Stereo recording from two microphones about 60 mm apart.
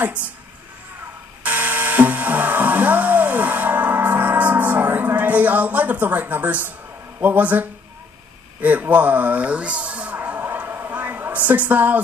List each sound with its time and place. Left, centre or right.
1.4 s music: right
7.2 s speech: right